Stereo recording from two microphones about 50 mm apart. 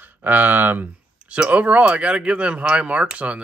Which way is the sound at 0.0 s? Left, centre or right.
Right.